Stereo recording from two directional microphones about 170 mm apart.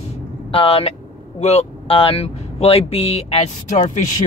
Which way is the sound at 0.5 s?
35° left (ahead or behind).